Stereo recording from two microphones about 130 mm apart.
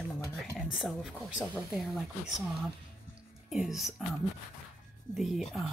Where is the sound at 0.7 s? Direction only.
Centre (ahead or behind).